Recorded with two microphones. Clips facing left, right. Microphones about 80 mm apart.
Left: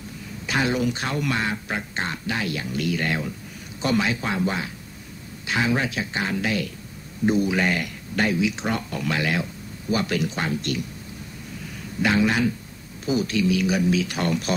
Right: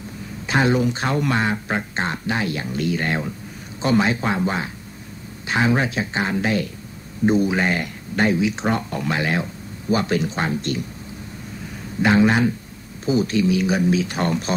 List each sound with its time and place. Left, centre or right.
0.5 s speech: right
12.0 s speech: right